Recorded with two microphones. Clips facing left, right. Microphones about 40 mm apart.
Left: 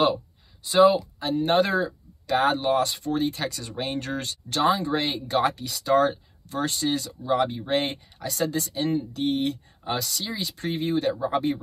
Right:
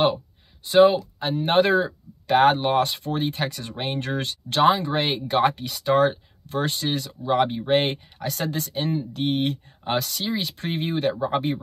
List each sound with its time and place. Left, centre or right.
0.7 s speech: right